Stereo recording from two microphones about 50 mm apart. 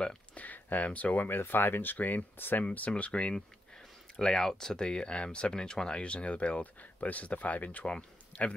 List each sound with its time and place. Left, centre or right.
0.0 s a sound: centre
0.4 s speech: left
1.3 s speech: left
2.6 s speech: left